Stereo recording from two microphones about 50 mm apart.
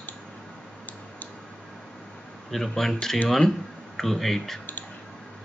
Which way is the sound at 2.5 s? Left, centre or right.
Centre.